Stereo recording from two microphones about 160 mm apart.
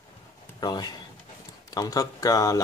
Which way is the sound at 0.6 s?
25° left (ahead or behind).